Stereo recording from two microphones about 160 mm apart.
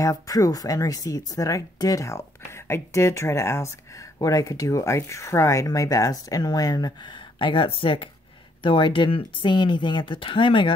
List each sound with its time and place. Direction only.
0.0 s speech: 20° left (ahead or behind)